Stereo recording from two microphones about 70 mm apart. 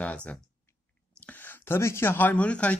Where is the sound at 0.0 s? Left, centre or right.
Centre.